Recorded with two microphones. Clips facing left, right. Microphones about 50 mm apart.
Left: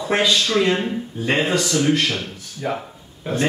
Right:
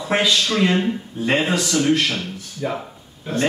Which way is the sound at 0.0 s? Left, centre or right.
Centre.